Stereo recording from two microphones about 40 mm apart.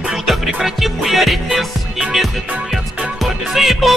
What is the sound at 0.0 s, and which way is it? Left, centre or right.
Music, centre.